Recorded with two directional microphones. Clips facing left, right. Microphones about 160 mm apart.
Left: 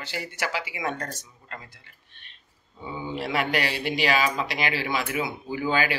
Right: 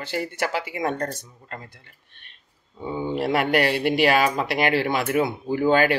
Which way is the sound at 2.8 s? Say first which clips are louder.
Right 6 dB; 50° right (ahead or behind).